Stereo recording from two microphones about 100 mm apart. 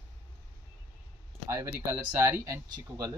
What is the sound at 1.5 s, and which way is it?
Speech, 25° right (ahead or behind).